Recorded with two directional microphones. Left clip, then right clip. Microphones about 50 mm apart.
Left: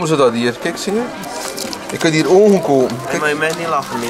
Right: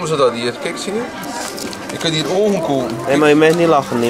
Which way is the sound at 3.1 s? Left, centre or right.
Right.